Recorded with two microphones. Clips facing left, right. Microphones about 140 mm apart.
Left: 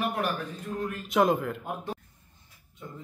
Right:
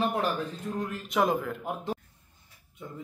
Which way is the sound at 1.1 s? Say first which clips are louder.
Left 3 dB; centre (ahead or behind).